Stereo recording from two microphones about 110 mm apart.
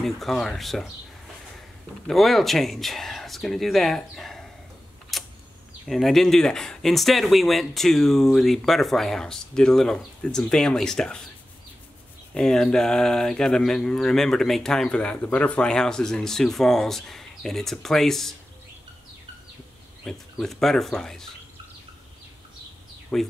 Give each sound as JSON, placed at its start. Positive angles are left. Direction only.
{"t": 0.0, "sound": "speech", "side_deg": 5}
{"t": 2.0, "sound": "speech", "side_deg": 0}
{"t": 5.1, "sound": "a sound", "side_deg": 0}
{"t": 5.9, "sound": "speech", "side_deg": 0}
{"t": 12.4, "sound": "speech", "side_deg": 5}
{"t": 20.1, "sound": "speech", "side_deg": 5}
{"t": 23.1, "sound": "speech", "side_deg": 5}